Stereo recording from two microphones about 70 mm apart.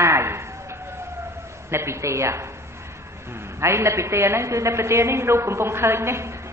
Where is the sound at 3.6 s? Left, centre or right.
Right.